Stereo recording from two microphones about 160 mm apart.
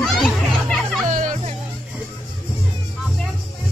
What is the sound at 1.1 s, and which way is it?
Music, 50° right (ahead or behind).